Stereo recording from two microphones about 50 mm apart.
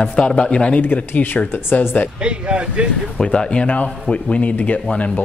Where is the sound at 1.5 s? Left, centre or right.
Left.